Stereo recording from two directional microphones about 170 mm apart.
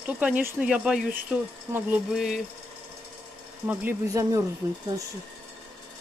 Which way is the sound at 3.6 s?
15° right (ahead or behind).